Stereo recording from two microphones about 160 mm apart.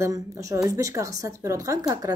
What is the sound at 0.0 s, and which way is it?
A woman's voice, 20° right (ahead or behind).